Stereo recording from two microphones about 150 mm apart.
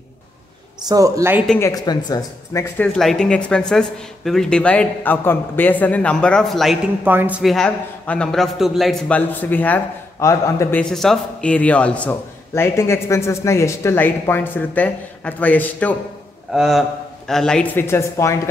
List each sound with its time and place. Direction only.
0.8 s speech: 25° right (ahead or behind)
1.6 s speech: 25° left (ahead or behind)
2.8 s a man's voice: 5° left (ahead or behind)
7.1 s a woman's voice: 10° right (ahead or behind)
7.5 s a man's voice: 5° left (ahead or behind)
10.8 s a man's voice: 5° left (ahead or behind)
16.5 s a man's voice: centre (ahead or behind); by 18.3 s 20° left (ahead or behind)